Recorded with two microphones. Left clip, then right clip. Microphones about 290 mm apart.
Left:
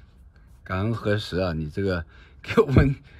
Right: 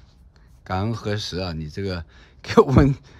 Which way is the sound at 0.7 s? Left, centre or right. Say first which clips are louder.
Even; centre.